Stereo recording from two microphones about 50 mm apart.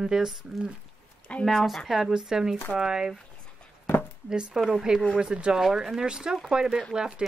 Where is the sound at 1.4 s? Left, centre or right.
Centre.